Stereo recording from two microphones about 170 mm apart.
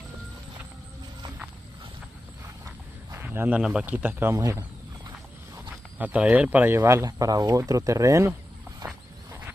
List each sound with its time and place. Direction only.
3.1 s speech: 15° right (ahead or behind)
4.4 s a sound: 20° right (ahead or behind)
5.9 s speech: 10° right (ahead or behind)